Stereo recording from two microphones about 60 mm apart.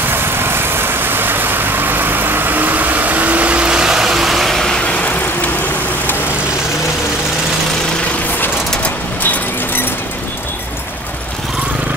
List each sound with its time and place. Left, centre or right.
0.1 s vehicle: right; by 4.7 s centre
4.8 s vehicle: left
8.8 s a sound: left